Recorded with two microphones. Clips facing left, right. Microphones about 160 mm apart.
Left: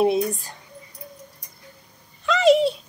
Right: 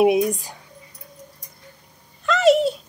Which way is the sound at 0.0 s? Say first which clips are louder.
Right 3 dB; 15° right (ahead or behind).